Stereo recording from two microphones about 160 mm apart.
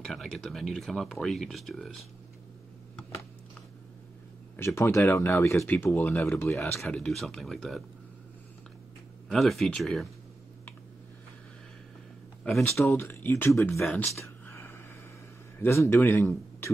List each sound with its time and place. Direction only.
0.0 s speech: centre (ahead or behind)
4.6 s speech: 15° left (ahead or behind)
6.8 s speech: 5° left (ahead or behind)
9.3 s speech: centre (ahead or behind)
12.4 s speech: centre (ahead or behind)
12.8 s speech: 15° left (ahead or behind)
13.8 s speech: centre (ahead or behind)
14.2 s a sound: 15° left (ahead or behind)
15.6 s speech: 15° left (ahead or behind)